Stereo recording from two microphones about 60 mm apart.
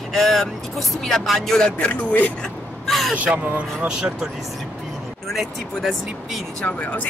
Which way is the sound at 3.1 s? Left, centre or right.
Right.